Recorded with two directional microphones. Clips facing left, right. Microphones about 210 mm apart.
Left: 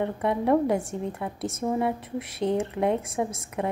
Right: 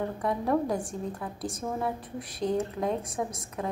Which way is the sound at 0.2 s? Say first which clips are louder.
Left 5 dB; 25° left (ahead or behind).